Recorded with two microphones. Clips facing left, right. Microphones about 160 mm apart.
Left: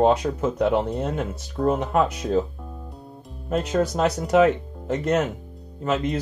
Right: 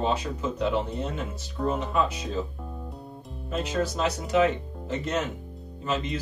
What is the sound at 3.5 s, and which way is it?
Speech, 60° left (ahead or behind).